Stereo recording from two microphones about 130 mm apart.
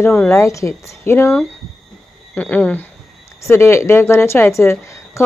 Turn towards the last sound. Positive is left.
turn(degrees=20)  # may be behind; listen again after turning